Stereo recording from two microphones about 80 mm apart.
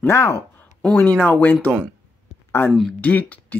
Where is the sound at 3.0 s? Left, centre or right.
Centre.